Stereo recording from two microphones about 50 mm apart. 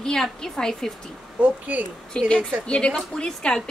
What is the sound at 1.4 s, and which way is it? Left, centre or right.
Speech, right.